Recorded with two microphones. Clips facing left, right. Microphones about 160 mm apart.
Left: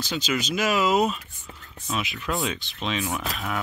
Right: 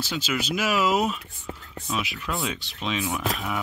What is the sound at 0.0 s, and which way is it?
Cutlery, 5° right (ahead or behind).